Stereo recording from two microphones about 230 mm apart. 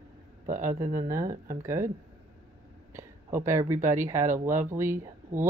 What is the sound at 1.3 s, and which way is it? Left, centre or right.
Speech, right.